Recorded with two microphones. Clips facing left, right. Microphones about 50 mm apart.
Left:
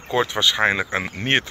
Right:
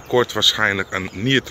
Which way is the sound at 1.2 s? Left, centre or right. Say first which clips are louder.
Right 2 dB; left.